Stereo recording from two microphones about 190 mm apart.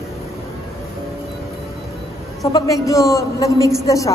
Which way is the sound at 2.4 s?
15° left (ahead or behind).